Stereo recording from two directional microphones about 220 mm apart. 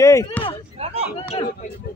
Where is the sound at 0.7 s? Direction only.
25° right (ahead or behind).